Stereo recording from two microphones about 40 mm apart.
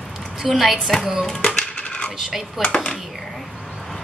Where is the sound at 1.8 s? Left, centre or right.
Left.